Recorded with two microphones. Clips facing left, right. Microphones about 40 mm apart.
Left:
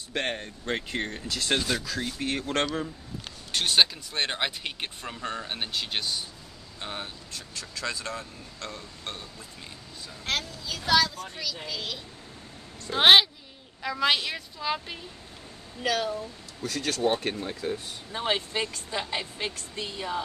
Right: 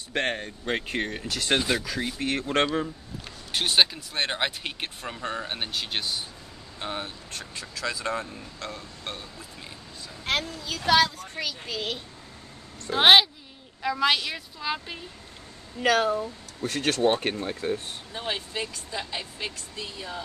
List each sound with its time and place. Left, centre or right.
0.1 s speech: centre
3.5 s speech: centre
8.0 s speech: right
8.5 s speech: centre
10.3 s a sound: centre
10.9 s speech: right
12.9 s a woman's voice: centre
15.8 s speech: right
17.4 s speech: right
18.1 s speech: left